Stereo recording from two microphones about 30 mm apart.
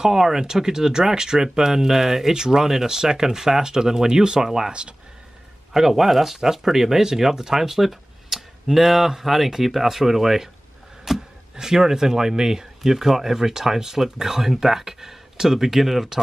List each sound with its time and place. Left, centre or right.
0.0 s speech: centre
11.1 s a sound: centre
11.5 s speech: centre